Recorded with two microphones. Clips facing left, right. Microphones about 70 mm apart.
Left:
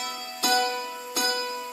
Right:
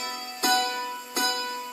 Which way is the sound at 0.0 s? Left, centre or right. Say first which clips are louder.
Right 1 dB; right.